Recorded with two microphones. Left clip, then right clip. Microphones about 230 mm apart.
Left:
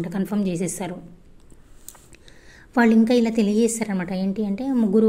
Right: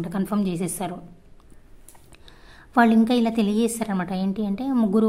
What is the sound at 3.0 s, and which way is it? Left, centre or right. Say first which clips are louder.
A woman's voice: left 2 dB; centre.